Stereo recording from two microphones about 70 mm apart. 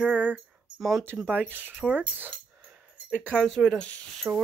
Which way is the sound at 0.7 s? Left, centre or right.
Centre.